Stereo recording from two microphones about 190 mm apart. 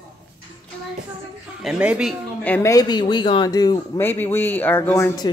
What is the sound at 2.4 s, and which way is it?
Speech, 10° left (ahead or behind).